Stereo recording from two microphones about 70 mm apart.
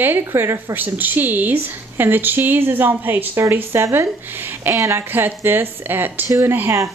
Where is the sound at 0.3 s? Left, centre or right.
Right.